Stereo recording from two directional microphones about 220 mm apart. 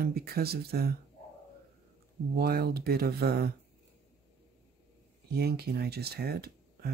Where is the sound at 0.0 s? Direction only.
45° right (ahead or behind).